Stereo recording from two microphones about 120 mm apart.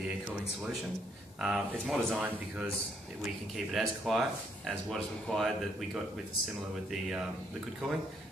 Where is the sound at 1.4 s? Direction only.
Centre (ahead or behind).